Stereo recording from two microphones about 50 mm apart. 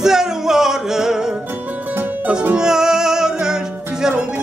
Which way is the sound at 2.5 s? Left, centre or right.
Centre.